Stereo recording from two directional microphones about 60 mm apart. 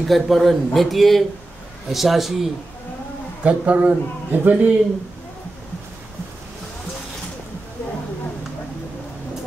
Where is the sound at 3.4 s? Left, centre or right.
Right.